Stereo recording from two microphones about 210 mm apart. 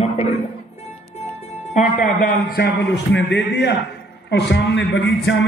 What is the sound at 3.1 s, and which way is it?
A man's voice, 55° left (ahead or behind).